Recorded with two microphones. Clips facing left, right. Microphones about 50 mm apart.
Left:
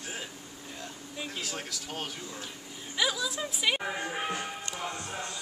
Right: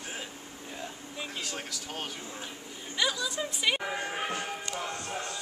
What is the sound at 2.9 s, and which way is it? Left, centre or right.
Music, centre.